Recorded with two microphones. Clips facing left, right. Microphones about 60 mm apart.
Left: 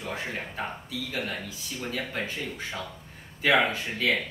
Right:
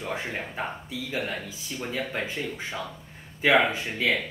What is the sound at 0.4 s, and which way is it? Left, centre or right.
Speech, centre.